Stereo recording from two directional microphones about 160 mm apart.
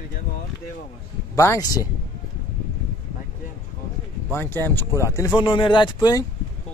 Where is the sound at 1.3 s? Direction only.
20° left (ahead or behind).